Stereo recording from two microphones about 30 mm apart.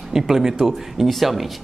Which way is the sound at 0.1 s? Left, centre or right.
Centre.